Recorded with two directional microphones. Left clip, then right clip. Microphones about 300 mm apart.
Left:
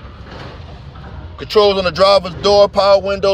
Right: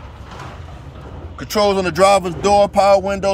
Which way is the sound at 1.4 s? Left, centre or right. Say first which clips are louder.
Left 4 dB; centre.